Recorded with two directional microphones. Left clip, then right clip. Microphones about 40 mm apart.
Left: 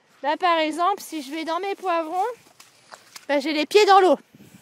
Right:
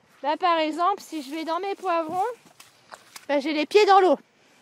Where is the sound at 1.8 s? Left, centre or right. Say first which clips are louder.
Left 1 dB; left.